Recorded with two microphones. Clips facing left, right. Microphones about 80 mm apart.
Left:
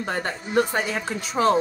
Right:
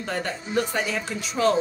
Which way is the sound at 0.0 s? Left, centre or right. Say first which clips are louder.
Left 2 dB; left.